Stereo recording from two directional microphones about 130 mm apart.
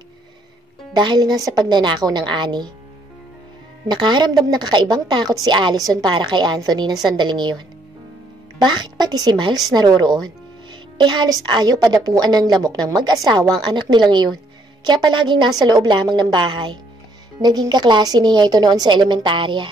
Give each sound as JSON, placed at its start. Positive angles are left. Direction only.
{"t": 0.9, "sound": "a woman's voice", "side_deg": -35}
{"t": 3.9, "sound": "a woman's voice", "side_deg": -35}